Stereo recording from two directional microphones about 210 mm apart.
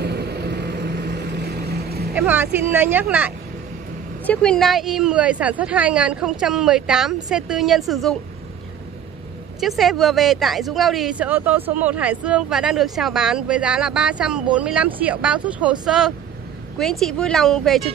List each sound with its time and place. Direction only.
0.0 s vehicle: 50° right (ahead or behind)
2.1 s speech: 10° right (ahead or behind)
4.3 s speech: 5° left (ahead or behind)
9.6 s speech: centre (ahead or behind)